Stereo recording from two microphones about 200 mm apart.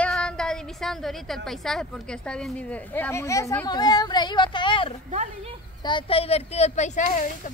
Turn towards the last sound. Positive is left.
turn(degrees=40)  # may be behind; listen again after turning